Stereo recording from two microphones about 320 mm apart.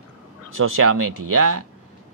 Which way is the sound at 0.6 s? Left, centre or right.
Right.